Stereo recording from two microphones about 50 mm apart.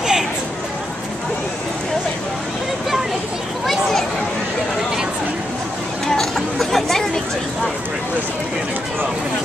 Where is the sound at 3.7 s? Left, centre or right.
Centre.